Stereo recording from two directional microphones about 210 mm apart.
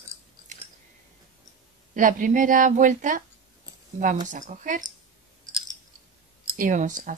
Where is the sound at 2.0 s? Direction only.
40° right (ahead or behind).